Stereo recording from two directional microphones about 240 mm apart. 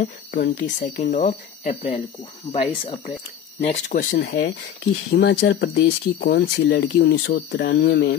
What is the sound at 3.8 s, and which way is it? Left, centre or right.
Speech, left.